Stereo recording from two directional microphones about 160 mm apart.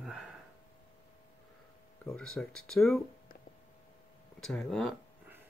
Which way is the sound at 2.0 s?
5° left (ahead or behind).